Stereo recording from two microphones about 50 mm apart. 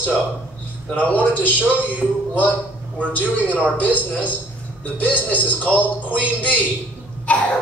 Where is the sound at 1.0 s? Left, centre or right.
Left.